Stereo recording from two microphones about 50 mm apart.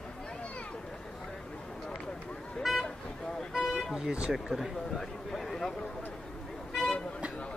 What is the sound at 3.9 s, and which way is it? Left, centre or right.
Speech, centre.